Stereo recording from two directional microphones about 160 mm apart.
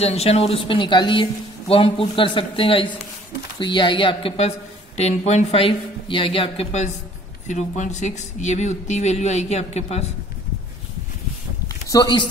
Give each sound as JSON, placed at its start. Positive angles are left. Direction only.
{"t": 0.0, "sound": "a woman's voice", "side_deg": 40}
{"t": 11.9, "sound": "speech", "side_deg": 25}